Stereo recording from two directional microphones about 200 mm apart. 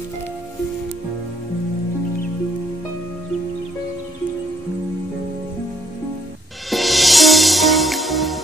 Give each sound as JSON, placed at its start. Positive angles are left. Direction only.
{"t": 6.7, "sound": "music", "side_deg": 0}